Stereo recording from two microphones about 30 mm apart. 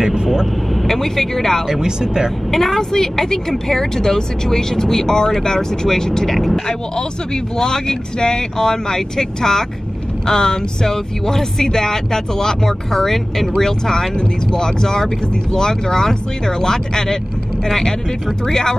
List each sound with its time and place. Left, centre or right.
0.0 s speech: right
0.8 s speech: centre
1.7 s speech: right
2.5 s speech: centre
7.5 s speech: left
18.5 s speech: left